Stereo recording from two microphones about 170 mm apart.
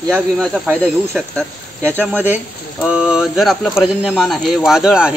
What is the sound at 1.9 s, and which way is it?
Speech, 10° right (ahead or behind).